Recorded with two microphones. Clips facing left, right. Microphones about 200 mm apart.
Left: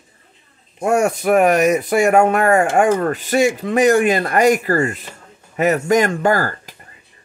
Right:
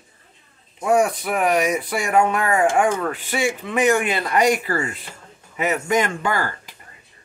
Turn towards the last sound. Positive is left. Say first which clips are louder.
# left 6 dB
turn(degrees=40)  # may be behind; listen again after turning